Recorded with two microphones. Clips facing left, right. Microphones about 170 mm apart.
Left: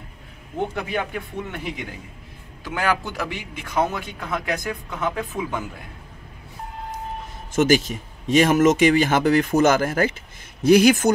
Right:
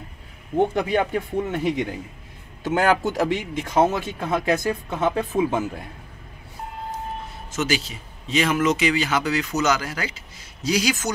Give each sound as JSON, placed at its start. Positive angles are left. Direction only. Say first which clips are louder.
{"t": 0.9, "sound": "speech", "louder": "right 5 dB", "side_deg": -35}
{"t": 3.8, "sound": "speech", "louder": "right 5 dB", "side_deg": -25}
{"t": 7.5, "sound": "speech", "louder": "left 7 dB", "side_deg": 50}